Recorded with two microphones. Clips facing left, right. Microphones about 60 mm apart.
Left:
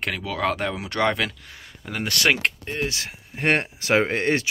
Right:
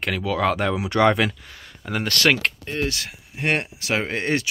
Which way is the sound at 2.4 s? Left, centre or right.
Left.